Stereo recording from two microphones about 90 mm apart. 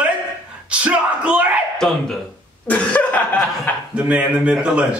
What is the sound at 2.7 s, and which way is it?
Cough, 15° left (ahead or behind).